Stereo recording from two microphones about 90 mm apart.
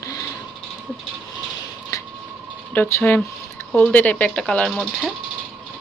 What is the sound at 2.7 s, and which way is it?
Speech, 20° left (ahead or behind).